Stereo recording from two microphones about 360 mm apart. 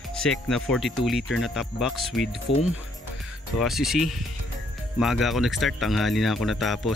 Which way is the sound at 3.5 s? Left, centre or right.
Centre.